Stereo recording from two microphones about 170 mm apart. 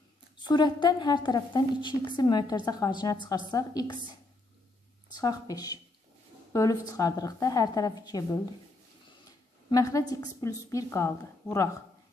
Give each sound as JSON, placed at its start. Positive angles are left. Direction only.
{"t": 0.4, "sound": "a woman's voice", "side_deg": 25}
{"t": 5.1, "sound": "a woman's voice", "side_deg": 20}
{"t": 9.7, "sound": "a woman's voice", "side_deg": 20}